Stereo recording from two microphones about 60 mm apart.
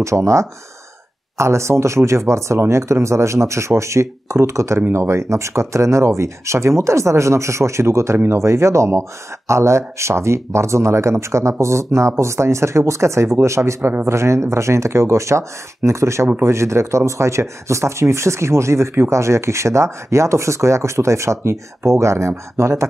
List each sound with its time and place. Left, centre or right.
0.0 s speech: right